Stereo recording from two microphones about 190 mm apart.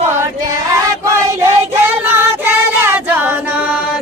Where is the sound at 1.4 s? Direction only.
15° right (ahead or behind).